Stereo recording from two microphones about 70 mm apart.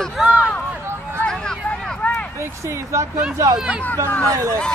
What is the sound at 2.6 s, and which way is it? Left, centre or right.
Vehicle, right.